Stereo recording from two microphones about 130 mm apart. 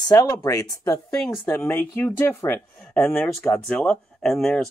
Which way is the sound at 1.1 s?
5° left (ahead or behind).